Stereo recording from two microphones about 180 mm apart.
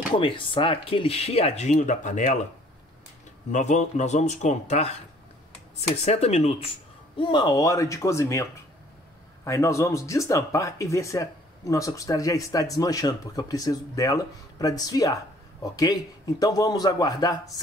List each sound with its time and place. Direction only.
0.1 s speech: 30° left (ahead or behind)
3.5 s speech: 40° left (ahead or behind)
7.2 s speech: 25° left (ahead or behind)